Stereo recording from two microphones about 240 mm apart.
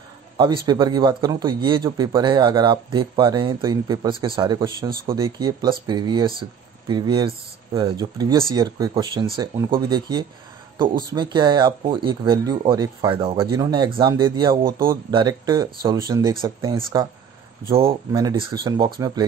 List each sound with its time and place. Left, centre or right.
0.4 s speech: centre